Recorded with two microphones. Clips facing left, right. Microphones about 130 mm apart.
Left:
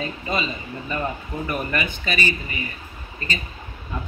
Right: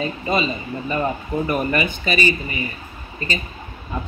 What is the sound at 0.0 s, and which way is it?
Speech, 15° right (ahead or behind).